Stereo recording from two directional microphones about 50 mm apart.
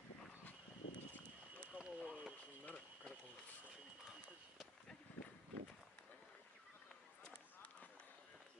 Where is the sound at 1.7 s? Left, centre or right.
Right.